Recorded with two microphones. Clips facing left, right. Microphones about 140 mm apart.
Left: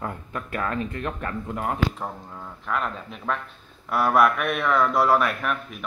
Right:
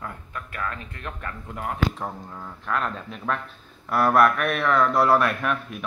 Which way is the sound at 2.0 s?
5° left (ahead or behind).